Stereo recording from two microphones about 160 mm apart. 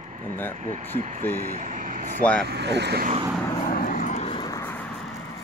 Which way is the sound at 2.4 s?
90° right.